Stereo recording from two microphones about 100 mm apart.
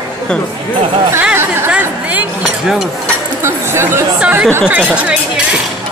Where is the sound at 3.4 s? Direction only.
25° right (ahead or behind).